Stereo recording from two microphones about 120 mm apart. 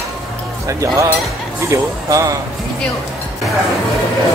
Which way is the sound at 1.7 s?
25° right (ahead or behind).